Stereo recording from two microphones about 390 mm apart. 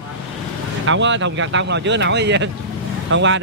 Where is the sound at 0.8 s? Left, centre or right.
Right.